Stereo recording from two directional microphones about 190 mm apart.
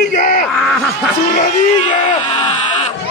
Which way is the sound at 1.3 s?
40° left (ahead or behind).